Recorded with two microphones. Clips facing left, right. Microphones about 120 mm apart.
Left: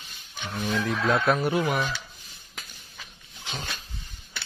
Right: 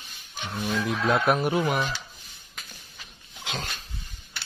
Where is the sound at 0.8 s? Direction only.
15° right (ahead or behind).